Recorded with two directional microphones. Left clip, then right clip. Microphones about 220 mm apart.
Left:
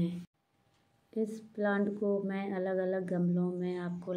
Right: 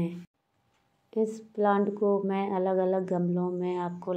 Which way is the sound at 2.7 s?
65° right (ahead or behind).